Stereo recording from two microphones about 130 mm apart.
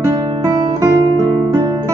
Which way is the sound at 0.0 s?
25° right (ahead or behind).